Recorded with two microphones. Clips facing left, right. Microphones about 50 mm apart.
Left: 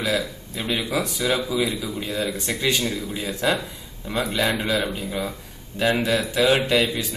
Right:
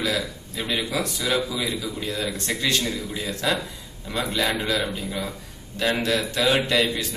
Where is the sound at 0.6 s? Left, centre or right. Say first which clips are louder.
Left 1 dB; centre.